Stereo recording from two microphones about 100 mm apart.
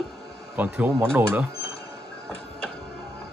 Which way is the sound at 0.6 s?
20° right (ahead or behind).